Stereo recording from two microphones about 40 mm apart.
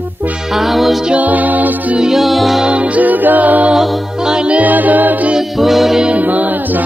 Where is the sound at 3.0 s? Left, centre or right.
Right.